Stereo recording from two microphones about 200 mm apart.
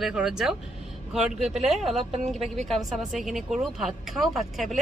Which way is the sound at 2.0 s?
30° right (ahead or behind).